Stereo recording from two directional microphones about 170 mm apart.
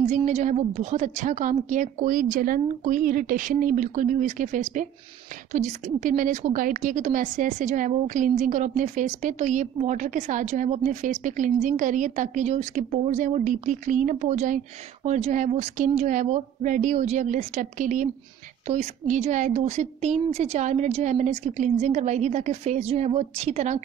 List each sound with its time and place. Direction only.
0.0 s a woman's voice: 45° right (ahead or behind)